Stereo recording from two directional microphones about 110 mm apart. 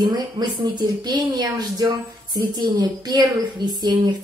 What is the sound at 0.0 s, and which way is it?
Speech, 40° right (ahead or behind).